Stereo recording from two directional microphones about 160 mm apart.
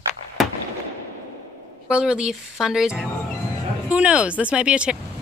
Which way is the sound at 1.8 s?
5° right (ahead or behind).